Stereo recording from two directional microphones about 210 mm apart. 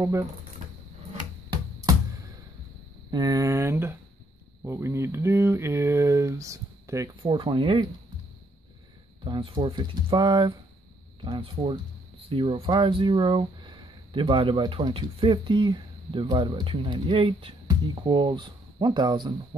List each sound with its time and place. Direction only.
0.0 s speech: 15° right (ahead or behind)
3.1 s speech: 20° right (ahead or behind)
9.2 s speech: 25° right (ahead or behind)